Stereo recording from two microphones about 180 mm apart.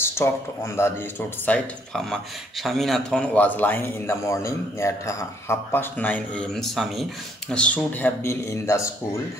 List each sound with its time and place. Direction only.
0.0 s a sound: 15° left (ahead or behind)
0.8 s a man's voice: 15° left (ahead or behind)
1.4 s a man's voice: 5° left (ahead or behind)